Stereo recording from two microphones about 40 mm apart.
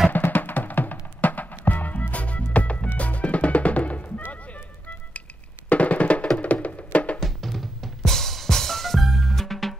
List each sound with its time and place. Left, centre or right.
0.1 s music: left
5.7 s music: left
7.2 s music: centre